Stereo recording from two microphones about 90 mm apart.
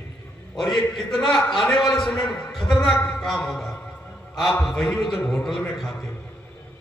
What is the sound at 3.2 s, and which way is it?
A man's voice, centre (ahead or behind).